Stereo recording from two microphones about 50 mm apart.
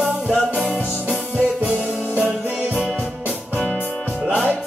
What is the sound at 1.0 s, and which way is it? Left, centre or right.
Music, centre.